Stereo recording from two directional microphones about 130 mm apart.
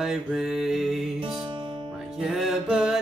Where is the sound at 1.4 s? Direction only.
40° right (ahead or behind).